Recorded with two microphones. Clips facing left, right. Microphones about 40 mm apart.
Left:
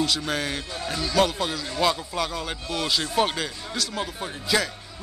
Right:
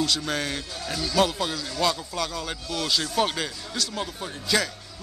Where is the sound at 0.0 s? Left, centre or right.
Centre.